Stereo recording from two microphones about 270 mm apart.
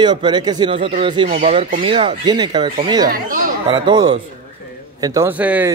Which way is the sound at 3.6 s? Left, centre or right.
Centre.